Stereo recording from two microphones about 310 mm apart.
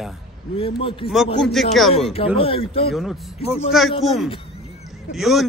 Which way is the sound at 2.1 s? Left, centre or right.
Centre.